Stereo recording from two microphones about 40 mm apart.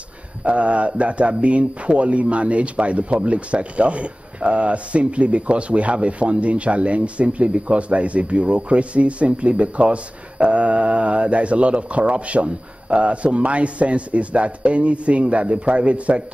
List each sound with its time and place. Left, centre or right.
0.4 s speech: right